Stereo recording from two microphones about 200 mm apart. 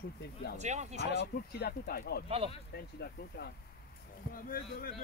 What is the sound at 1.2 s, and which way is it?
Speech, 55° left (ahead or behind).